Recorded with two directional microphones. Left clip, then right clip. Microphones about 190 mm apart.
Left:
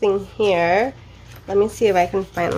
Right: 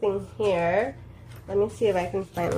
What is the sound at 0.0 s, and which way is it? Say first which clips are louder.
Speech: left 7 dB; 55° left (ahead or behind).